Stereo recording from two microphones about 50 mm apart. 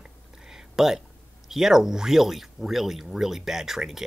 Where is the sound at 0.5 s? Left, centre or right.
Centre.